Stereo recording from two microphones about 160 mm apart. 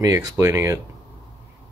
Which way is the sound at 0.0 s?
20° right (ahead or behind).